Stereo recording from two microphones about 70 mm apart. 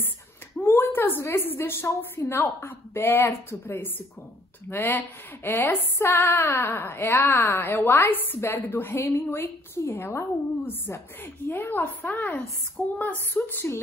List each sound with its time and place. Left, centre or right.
0.6 s a woman's voice: left
12.4 s a woman's voice: centre
13.0 s a woman's voice: left